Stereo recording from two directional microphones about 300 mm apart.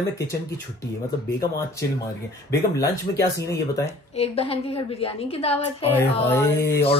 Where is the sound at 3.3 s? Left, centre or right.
Centre.